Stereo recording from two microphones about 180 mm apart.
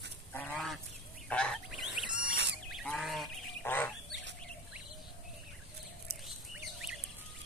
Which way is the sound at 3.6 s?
10° left (ahead or behind).